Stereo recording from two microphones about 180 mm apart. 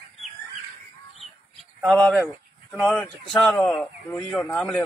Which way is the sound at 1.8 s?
Centre (ahead or behind).